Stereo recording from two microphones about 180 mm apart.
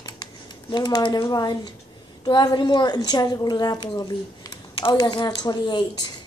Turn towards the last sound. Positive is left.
turn(degrees=25)  # may be behind; listen again after turning